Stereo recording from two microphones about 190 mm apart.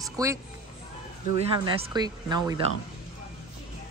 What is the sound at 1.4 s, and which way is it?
Speech, 30° right (ahead or behind).